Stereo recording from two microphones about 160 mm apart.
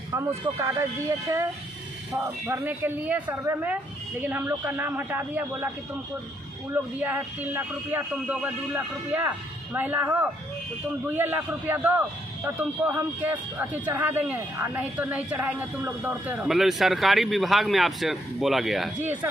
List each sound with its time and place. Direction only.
0.1 s a man's voice: 20° right (ahead or behind)
6.7 s a man's voice: 10° right (ahead or behind)